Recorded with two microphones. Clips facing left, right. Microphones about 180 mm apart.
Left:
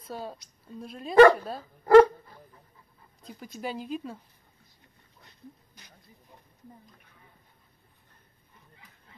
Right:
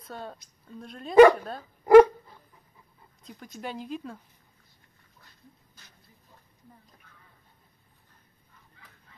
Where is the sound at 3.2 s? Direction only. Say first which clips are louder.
Left 2 dB; 5° left (ahead or behind).